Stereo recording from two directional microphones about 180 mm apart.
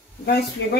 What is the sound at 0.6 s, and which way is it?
Speech, 85° left.